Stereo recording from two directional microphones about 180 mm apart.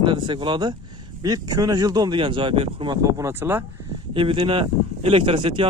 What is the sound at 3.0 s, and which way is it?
Speech, 15° right (ahead or behind).